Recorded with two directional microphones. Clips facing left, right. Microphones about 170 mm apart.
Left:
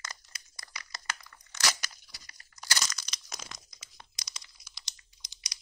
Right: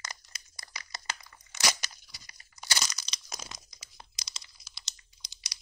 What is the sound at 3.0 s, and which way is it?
Crumpling, 25° right (ahead or behind).